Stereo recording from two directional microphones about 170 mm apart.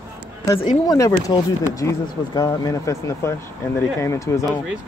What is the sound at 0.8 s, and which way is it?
Speech, 20° left (ahead or behind).